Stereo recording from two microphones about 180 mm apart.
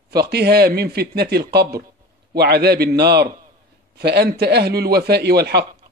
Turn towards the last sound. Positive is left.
turn(degrees=-65)  # may be behind; listen again after turning